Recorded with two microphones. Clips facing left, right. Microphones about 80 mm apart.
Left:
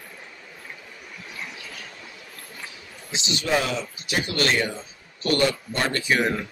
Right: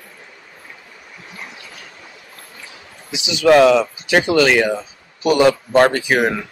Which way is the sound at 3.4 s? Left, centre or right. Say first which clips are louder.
Right 15 dB; right.